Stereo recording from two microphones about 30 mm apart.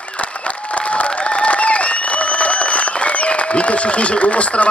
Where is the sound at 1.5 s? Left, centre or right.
Left.